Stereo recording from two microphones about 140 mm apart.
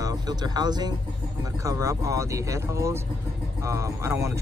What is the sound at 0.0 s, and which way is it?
Speech, 25° right (ahead or behind).